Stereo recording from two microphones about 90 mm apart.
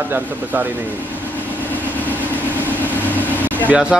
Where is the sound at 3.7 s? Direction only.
10° right (ahead or behind).